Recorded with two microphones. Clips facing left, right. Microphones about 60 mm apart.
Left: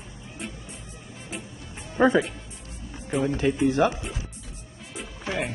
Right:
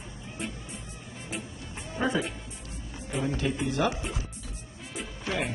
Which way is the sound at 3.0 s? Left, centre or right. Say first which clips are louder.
Left 6 dB; left.